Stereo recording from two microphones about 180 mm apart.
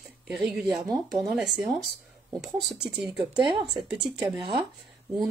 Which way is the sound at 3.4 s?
25° right (ahead or behind).